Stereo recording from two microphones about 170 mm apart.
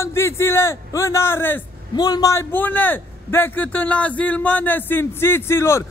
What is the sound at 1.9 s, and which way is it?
A man's voice, 25° left (ahead or behind).